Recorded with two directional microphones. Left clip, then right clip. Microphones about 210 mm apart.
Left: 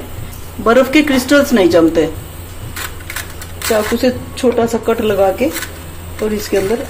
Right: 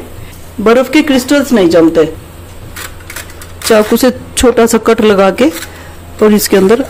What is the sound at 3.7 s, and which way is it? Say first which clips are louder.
Speech: right 6 dB; 45° right (ahead or behind).